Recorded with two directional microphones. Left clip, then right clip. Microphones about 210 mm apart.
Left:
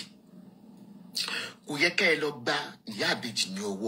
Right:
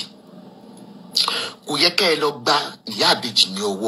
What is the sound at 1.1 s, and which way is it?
A man's voice, 45° right (ahead or behind).